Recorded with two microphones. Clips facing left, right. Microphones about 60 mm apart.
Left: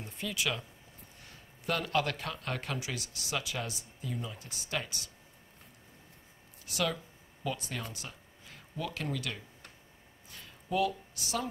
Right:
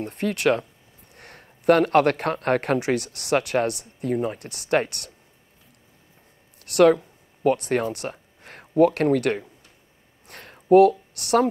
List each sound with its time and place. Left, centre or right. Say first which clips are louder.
0.0 s speech: right 13 dB; right
6.6 s speech: right 17 dB; right
10.2 s a sound: right 12 dB; right